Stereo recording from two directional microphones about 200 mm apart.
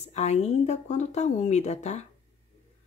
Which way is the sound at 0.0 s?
35° left (ahead or behind).